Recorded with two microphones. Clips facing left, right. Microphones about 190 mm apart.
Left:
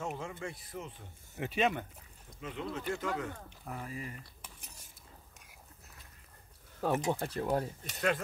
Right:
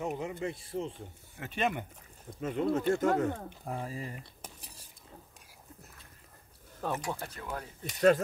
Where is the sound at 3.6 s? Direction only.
30° right (ahead or behind).